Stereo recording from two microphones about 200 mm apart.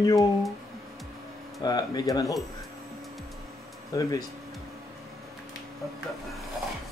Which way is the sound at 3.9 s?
20° left (ahead or behind).